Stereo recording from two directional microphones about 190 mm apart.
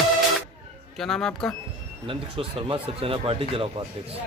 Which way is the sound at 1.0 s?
Centre (ahead or behind).